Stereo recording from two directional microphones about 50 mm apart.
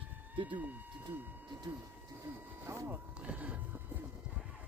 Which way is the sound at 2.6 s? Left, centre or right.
Right.